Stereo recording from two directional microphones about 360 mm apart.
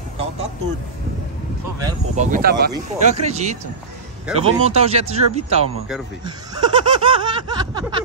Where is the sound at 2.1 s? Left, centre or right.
Right.